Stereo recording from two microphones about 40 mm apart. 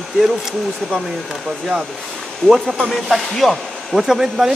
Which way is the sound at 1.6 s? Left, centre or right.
Centre.